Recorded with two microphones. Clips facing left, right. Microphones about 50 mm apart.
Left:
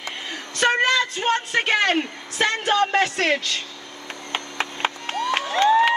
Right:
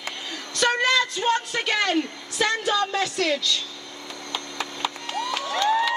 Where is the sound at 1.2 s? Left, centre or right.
Left.